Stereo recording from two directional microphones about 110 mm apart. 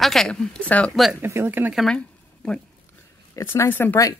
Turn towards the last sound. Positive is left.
turn(degrees=15)  # may be behind; listen again after turning